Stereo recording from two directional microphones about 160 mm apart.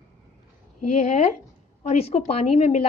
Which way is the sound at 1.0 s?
50° left (ahead or behind).